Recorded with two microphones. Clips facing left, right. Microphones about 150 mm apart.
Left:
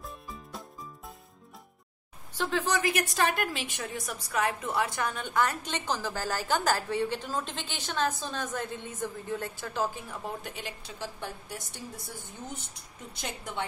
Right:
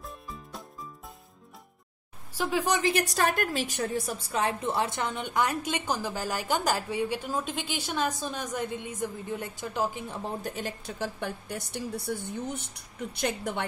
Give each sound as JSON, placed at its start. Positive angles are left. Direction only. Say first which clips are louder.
{"t": 0.0, "sound": "music", "louder": "right 1 dB", "side_deg": 0}
{"t": 2.3, "sound": "a woman's voice", "louder": "right 2 dB", "side_deg": -15}
{"t": 2.8, "sound": "a woman's voice", "louder": "right 2 dB", "side_deg": -35}
{"t": 10.4, "sound": "a woman's voice", "louder": "right 6 dB", "side_deg": -45}